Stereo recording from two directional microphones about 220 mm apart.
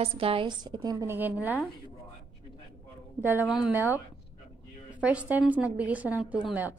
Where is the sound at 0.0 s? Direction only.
25° right (ahead or behind); by 1.5 s 10° right (ahead or behind).